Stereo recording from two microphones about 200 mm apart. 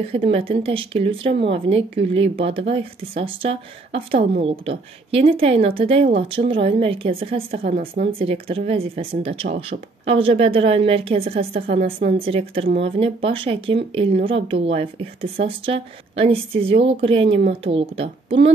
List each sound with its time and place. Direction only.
0.1 s a woman's voice: 30° right (ahead or behind)
11.7 s a woman's voice: 50° right (ahead or behind)
12.3 s a woman's voice: 30° right (ahead or behind)